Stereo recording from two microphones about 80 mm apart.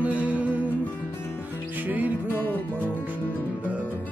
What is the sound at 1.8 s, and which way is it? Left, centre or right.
Music, right.